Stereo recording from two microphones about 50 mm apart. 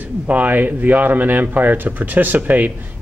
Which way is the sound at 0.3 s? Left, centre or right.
Right.